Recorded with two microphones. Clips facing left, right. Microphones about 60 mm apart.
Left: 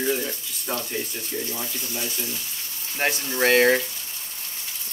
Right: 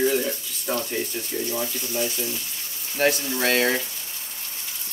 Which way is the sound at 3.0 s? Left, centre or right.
Left.